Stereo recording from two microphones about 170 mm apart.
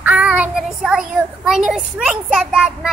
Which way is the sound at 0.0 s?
10° right (ahead or behind).